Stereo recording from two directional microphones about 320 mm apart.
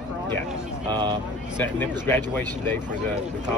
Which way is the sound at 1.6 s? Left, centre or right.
Centre.